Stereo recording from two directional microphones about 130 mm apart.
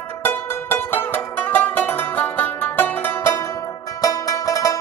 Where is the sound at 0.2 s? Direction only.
15° left (ahead or behind).